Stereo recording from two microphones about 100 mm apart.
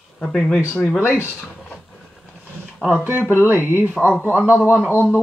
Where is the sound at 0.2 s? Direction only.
5° left (ahead or behind).